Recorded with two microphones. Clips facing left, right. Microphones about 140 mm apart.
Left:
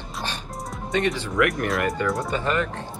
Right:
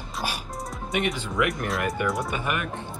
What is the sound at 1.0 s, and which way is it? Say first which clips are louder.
Speech: left 3 dB; 15° right (ahead or behind).